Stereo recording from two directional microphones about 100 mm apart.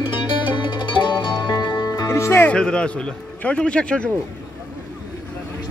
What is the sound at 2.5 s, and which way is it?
A man's voice, 10° left (ahead or behind).